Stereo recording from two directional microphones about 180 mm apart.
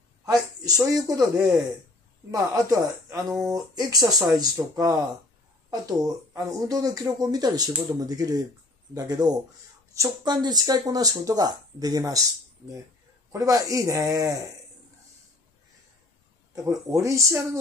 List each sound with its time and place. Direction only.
0.7 s a man's voice: 15° right (ahead or behind)
16.5 s a man's voice: 15° right (ahead or behind)